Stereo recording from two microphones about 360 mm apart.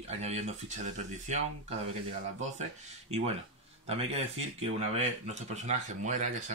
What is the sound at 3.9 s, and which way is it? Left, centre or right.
Speech, centre.